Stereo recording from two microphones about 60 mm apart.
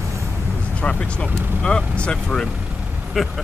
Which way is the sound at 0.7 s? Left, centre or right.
Centre.